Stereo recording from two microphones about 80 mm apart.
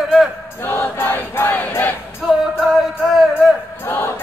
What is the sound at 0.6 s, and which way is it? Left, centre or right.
Choir, left.